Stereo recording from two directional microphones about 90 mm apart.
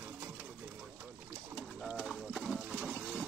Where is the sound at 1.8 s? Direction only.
5° right (ahead or behind).